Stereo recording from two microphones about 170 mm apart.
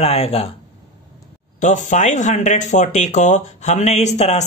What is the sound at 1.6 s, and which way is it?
Speech, 45° left (ahead or behind).